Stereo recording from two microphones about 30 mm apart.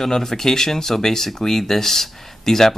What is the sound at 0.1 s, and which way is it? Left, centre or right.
Speech, centre.